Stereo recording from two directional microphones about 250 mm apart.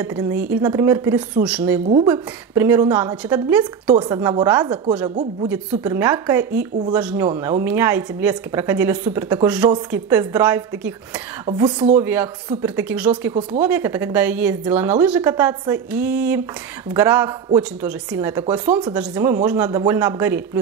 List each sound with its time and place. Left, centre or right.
0.0 s speech: centre